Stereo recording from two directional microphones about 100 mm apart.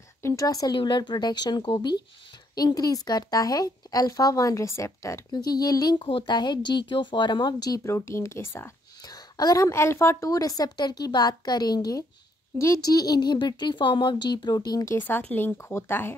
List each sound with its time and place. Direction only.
0.2 s a woman's voice: 35° left (ahead or behind)
0.7 s a woman's voice: 50° left (ahead or behind); by 5.2 s 30° left (ahead or behind)
5.3 s speech: 40° left (ahead or behind)
7.9 s speech: 30° left (ahead or behind)
9.0 s a woman's voice: 40° left (ahead or behind)
15.0 s speech: 20° left (ahead or behind)